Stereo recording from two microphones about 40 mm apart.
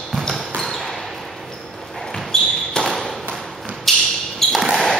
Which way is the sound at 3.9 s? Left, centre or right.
Centre.